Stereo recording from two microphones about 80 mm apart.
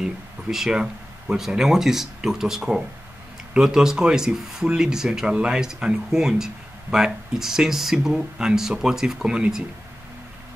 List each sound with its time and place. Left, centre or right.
0.0 s speech: centre